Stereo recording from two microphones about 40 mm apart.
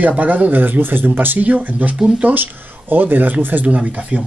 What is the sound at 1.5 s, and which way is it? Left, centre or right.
Speech, right.